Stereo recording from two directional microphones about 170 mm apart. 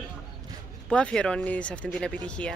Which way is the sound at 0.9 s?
5° left (ahead or behind).